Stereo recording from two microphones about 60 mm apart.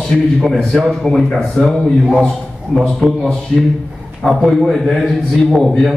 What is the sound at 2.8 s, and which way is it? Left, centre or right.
A man's voice, centre.